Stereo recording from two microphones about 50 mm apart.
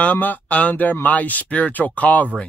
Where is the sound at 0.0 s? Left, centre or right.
Left.